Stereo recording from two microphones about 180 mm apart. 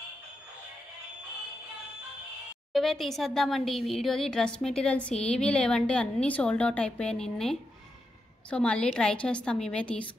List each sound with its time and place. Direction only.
2.7 s speech: centre (ahead or behind)